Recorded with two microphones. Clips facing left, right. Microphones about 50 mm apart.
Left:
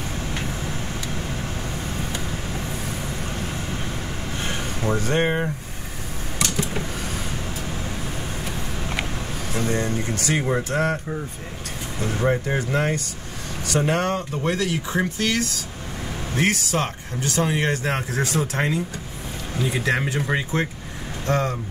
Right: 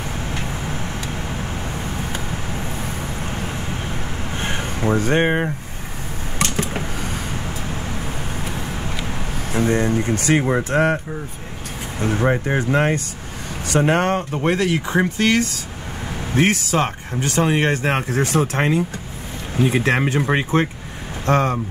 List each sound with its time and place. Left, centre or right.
1.0 s vehicle: right
4.3 s a sound: right
5.0 s speech: right
6.4 s a sound: right
6.8 s vehicle: centre
9.5 s speech: right
12.0 s speech: right